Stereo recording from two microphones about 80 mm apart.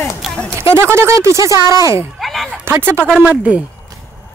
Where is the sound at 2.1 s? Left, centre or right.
Centre.